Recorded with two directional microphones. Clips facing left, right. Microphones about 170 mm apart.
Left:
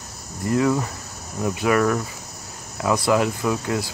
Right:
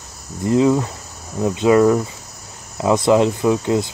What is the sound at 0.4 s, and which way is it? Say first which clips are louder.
Speech: right 5 dB; 20° right (ahead or behind).